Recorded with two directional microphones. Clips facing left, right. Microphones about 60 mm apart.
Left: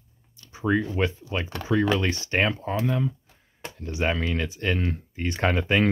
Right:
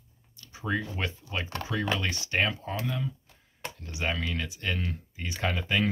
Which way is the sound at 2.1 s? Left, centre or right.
Left.